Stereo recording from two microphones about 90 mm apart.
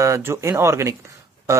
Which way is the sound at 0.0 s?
30° right (ahead or behind).